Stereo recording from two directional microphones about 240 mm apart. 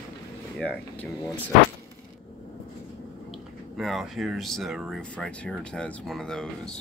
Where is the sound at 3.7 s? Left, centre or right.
Centre.